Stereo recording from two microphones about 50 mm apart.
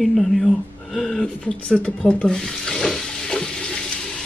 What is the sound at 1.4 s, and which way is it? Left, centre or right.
Speech, left.